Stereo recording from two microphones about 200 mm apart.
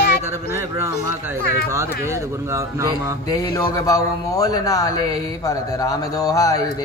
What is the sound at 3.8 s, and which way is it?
Speech, 15° left (ahead or behind).